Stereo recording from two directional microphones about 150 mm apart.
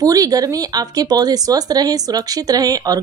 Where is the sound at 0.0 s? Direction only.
25° right (ahead or behind).